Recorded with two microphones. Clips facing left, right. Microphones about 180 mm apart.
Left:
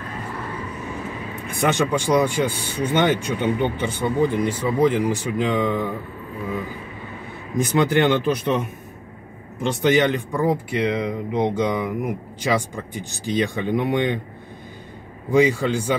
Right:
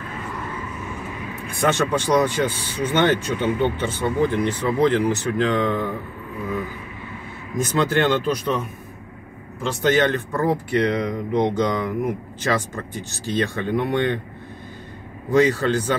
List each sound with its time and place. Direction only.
1.5 s speech: 15° left (ahead or behind)
7.5 s speech: 15° left (ahead or behind)
9.8 s speech: 15° left (ahead or behind)
15.3 s speech: 15° left (ahead or behind)